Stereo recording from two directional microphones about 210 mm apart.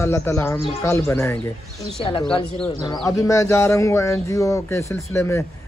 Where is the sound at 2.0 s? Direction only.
25° left (ahead or behind).